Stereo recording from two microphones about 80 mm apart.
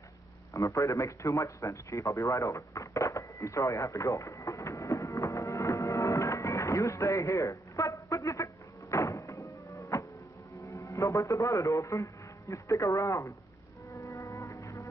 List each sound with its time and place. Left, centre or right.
0.5 s a man's voice: left
8.9 s music: left
10.7 s a man's voice: left
13.9 s livestock: left